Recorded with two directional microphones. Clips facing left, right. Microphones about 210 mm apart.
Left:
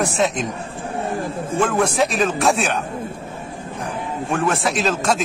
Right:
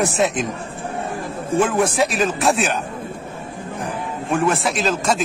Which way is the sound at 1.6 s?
10° right (ahead or behind).